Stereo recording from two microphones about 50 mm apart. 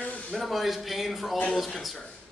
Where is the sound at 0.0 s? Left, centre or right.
Left.